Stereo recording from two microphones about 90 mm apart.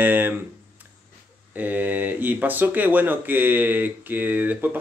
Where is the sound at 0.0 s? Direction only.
20° right (ahead or behind).